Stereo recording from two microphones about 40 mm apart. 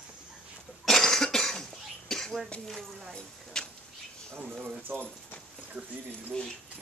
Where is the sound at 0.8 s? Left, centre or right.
Centre.